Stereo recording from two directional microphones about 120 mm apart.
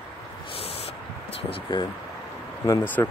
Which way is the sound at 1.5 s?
40° left (ahead or behind).